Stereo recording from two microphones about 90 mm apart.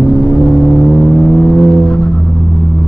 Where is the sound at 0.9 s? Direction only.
10° left (ahead or behind).